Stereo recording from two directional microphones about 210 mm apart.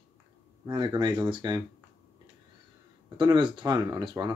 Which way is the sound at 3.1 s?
20° right (ahead or behind).